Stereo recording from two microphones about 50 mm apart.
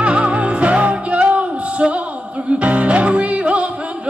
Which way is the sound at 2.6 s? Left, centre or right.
Right.